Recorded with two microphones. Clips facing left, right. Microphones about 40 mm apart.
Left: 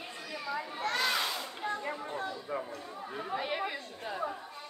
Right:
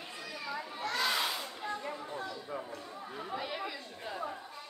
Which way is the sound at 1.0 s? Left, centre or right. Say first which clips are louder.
Right 2 dB; centre.